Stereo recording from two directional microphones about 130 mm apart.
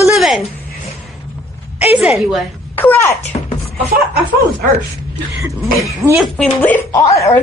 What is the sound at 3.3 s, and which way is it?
Music, 45° left (ahead or behind).